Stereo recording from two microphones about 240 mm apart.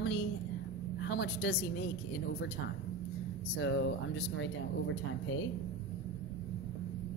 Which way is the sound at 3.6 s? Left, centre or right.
Left.